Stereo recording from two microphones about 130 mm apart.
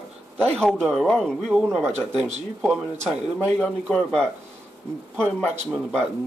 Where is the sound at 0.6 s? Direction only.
Centre (ahead or behind).